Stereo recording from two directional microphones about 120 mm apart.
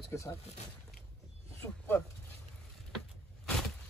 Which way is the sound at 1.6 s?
15° left (ahead or behind).